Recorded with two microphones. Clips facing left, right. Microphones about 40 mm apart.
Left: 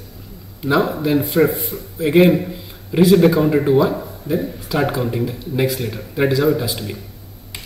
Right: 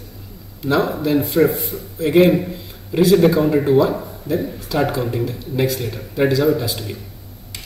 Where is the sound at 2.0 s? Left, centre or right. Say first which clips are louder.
Even; centre.